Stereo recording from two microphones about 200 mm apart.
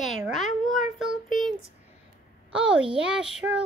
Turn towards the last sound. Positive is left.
turn(degrees=-5)  # may be behind; listen again after turning